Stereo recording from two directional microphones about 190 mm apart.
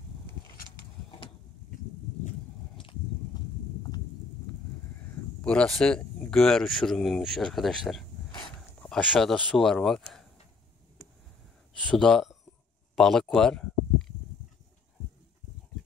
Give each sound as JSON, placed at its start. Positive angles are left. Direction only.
{"t": 2.8, "sound": "a sound", "side_deg": 25}
{"t": 4.9, "sound": "speech", "side_deg": 10}
{"t": 8.3, "sound": "dog", "side_deg": 20}
{"t": 8.8, "sound": "speech", "side_deg": 5}
{"t": 11.8, "sound": "speech", "side_deg": 5}